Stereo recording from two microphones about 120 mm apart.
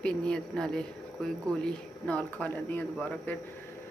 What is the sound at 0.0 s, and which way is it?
Speech, 5° left (ahead or behind).